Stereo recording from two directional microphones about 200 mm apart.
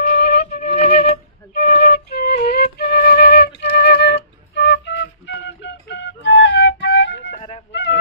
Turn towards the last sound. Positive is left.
turn(degrees=65)  # may be behind; listen again after turning